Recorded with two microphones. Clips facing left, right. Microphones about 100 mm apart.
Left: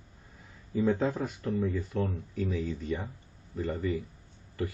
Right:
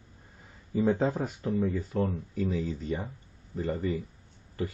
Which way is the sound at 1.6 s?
45° right (ahead or behind).